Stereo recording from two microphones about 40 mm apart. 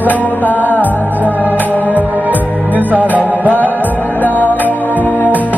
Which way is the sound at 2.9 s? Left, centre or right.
Right.